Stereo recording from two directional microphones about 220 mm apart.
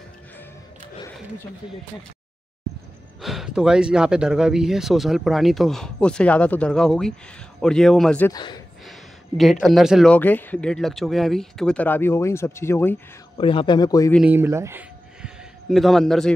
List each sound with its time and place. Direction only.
3.2 s speech: centre (ahead or behind)
8.3 s a man's voice: 20° left (ahead or behind)
9.4 s speech: centre (ahead or behind)
13.4 s a man's voice: 25° left (ahead or behind)
14.1 s speech: 5° right (ahead or behind)